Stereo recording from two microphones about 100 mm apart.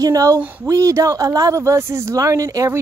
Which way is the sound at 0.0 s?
35° right (ahead or behind).